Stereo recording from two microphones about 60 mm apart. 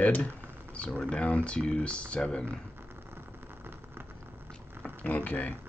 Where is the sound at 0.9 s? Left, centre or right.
Centre.